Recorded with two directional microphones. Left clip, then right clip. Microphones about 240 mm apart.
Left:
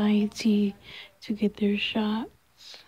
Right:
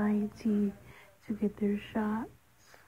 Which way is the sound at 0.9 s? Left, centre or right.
Left.